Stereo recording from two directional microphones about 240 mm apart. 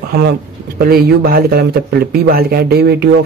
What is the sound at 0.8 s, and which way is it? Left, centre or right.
Speech, right.